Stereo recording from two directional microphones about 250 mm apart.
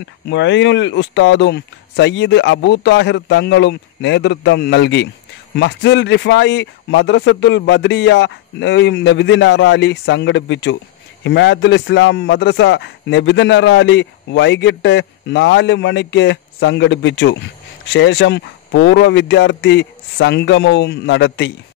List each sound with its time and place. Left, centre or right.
0.3 s a man's voice: left